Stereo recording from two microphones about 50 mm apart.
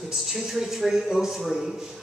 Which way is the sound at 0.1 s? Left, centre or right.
Centre.